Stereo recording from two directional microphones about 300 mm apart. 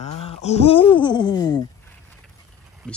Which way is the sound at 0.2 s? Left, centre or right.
Centre.